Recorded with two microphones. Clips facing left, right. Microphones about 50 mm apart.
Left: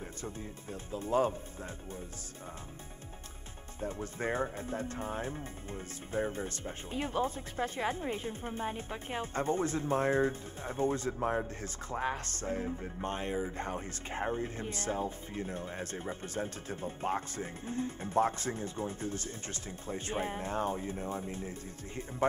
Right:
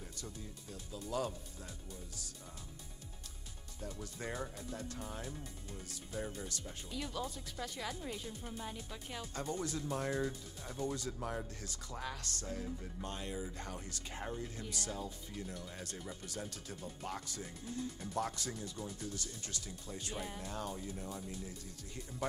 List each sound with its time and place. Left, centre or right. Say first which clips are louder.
0.2 s speech: left 7 dB; left
3.8 s speech: left 8 dB; left